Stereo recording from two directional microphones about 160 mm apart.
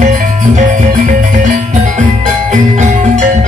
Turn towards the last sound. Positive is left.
turn(degrees=-50)  # may be behind; listen again after turning